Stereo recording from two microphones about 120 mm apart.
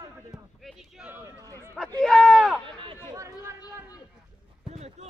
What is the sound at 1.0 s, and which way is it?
Speech, 15° right (ahead or behind).